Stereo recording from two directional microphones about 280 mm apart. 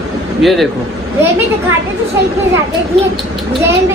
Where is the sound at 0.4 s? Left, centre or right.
Centre.